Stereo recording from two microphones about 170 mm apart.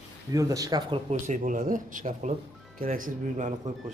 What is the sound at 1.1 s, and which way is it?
Speech, 45° right (ahead or behind).